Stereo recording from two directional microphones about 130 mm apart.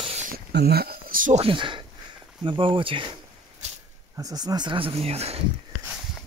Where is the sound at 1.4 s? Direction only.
40° right (ahead or behind).